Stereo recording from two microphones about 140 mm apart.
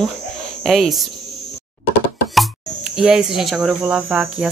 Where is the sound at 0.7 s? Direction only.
Centre (ahead or behind).